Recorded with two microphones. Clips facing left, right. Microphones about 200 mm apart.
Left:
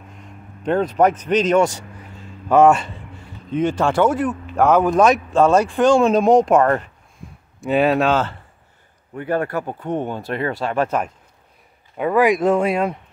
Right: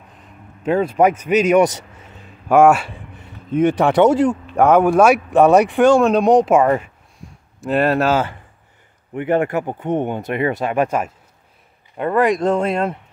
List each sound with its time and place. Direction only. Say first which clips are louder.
0.1 s a sound: left 2 dB; 5° right (ahead or behind)
3.5 s speech: right 4 dB; 15° right (ahead or behind)
4.6 s speech: right 2 dB; 10° right (ahead or behind)
5.9 s speech: right 1 dB; centre (ahead or behind)
7.2 s a sound: left 1 dB; centre (ahead or behind)
9.1 s speech: right 4 dB; 15° right (ahead or behind)
12.0 s speech: even; centre (ahead or behind)